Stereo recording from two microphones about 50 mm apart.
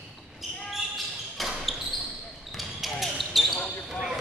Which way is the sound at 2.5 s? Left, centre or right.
Centre.